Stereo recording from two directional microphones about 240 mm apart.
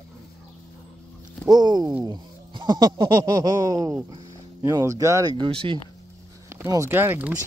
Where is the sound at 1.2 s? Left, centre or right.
Centre.